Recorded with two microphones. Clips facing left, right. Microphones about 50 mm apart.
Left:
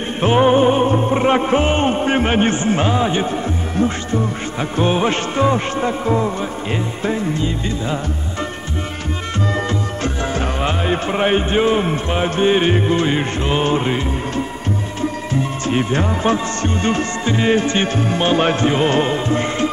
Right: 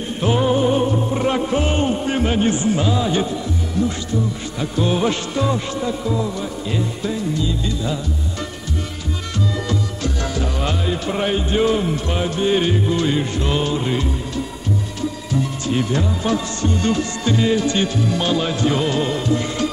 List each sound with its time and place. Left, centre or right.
0.2 s music: left
9.7 s music: left